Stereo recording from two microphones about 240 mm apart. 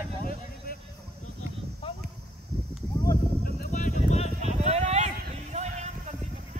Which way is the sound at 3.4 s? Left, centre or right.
Left.